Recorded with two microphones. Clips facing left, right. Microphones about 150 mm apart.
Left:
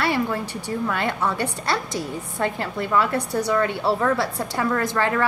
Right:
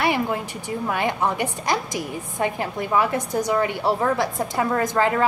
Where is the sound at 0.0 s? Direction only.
20° right (ahead or behind).